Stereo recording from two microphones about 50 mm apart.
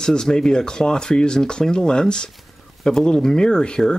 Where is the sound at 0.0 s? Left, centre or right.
Centre.